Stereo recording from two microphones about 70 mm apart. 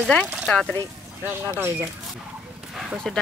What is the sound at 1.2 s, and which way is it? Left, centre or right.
Speech, right.